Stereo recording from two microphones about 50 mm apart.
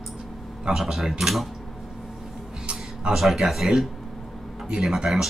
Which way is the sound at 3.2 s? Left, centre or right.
Centre.